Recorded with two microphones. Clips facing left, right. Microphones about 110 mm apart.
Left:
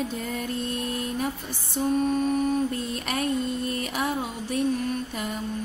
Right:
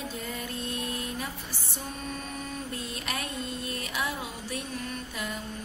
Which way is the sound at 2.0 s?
45° left (ahead or behind).